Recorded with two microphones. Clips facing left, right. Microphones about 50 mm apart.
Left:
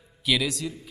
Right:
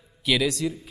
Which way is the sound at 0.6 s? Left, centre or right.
Centre.